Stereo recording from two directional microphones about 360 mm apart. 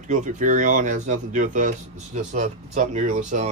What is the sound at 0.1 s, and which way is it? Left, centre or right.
Speech, right.